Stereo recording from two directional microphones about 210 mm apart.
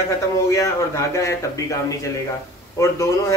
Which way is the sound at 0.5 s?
15° left (ahead or behind).